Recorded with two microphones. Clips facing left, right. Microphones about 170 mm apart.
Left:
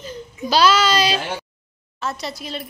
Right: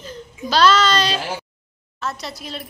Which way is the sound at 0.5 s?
5° left (ahead or behind).